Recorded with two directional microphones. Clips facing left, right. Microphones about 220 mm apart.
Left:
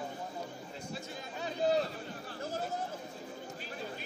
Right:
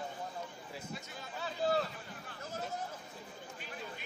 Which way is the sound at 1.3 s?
20° left (ahead or behind).